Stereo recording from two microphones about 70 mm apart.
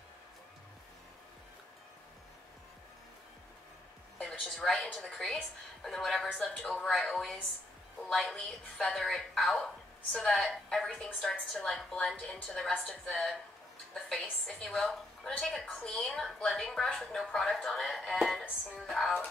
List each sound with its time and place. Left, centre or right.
4.2 s a woman's voice: centre
15.6 s a woman's voice: centre
15.9 s a woman's voice: centre